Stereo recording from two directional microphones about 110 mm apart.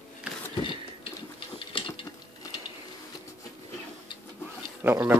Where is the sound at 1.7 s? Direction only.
55° left (ahead or behind).